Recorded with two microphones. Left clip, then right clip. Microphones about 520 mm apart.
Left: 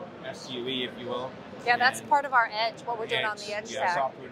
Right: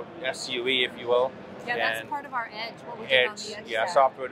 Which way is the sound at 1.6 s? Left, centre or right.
Left.